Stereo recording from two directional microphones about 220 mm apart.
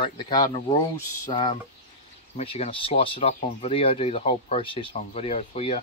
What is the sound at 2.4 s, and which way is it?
Speech, 25° left (ahead or behind).